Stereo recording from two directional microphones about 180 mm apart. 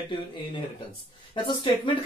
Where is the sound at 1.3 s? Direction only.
25° left (ahead or behind).